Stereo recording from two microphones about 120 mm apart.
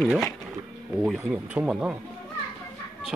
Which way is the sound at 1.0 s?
5° right (ahead or behind).